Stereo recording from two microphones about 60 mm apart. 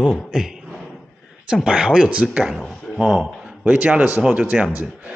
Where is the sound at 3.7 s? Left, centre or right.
Right.